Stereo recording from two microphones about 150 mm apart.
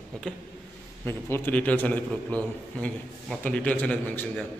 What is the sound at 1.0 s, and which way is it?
A man's voice, 15° left (ahead or behind).